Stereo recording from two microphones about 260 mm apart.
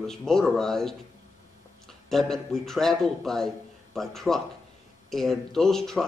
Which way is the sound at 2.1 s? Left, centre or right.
Centre.